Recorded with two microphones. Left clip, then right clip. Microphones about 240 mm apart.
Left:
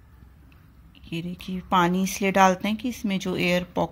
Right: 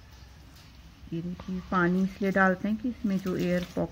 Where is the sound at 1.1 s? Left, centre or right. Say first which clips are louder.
Left 4 dB; left.